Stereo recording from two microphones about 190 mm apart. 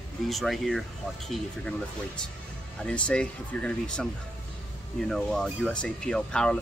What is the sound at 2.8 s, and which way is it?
Speech, 5° left (ahead or behind).